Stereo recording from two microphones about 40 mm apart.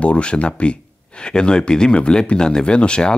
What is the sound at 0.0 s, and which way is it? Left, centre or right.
Speech, left.